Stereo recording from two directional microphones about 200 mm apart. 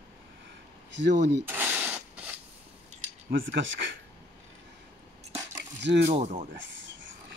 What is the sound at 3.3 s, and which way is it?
Speech, 70° right (ahead or behind).